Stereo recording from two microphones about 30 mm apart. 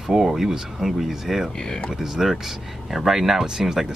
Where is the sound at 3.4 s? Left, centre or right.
Centre.